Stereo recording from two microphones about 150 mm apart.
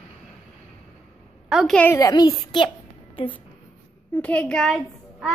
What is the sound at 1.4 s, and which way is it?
Speech, centre (ahead or behind).